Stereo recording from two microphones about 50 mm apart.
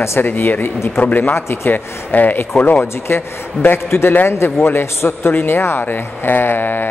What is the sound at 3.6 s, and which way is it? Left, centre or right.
A man's voice, left.